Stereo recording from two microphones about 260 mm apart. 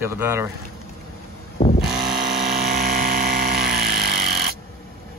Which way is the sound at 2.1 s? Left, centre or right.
Right.